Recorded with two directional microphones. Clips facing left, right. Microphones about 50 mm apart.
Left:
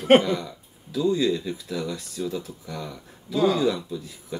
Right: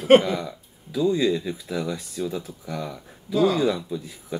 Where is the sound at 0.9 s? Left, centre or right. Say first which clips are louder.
Right 1 dB; centre.